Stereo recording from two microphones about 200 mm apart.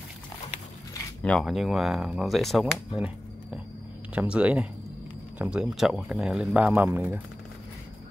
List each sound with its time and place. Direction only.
1.2 s speech: centre (ahead or behind)
4.1 s speech: 5° right (ahead or behind)